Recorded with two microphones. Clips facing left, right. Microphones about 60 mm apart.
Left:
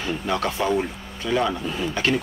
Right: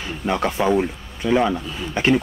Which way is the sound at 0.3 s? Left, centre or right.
Right.